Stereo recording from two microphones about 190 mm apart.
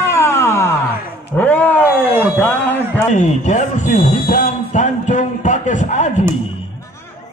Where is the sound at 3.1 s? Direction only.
40° left (ahead or behind).